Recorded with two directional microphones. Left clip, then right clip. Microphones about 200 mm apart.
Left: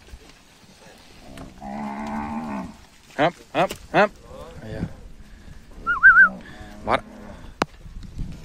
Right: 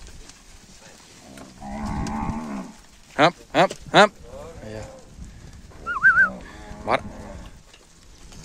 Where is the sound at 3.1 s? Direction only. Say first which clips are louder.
Right 3 dB; 15° right (ahead or behind).